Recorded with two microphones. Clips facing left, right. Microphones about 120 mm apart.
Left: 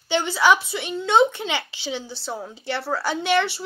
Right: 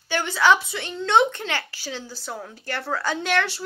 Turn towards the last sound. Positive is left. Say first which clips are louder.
# left 3 dB
turn(degrees=10)  # may be behind; listen again after turning